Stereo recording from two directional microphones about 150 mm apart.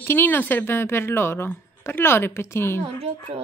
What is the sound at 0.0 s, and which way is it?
Speech, 15° left (ahead or behind).